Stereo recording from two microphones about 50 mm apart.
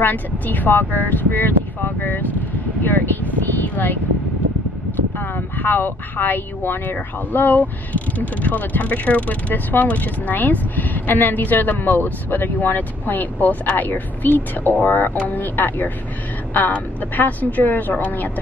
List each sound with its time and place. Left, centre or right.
0.0 s speech: left
5.2 s speech: left